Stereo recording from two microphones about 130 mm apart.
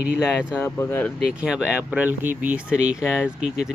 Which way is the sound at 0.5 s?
15° left (ahead or behind).